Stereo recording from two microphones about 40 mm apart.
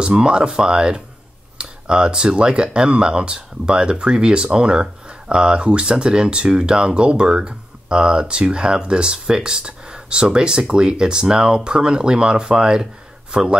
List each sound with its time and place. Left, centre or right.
0.0 s speech: right
1.6 s a sound: right
2.3 s speech: right